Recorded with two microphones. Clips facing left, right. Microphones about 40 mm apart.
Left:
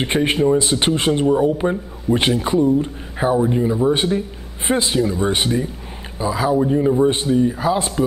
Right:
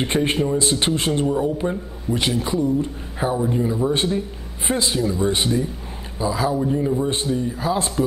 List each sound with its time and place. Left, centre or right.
0.0 s speech: left
2.0 s a man's voice: left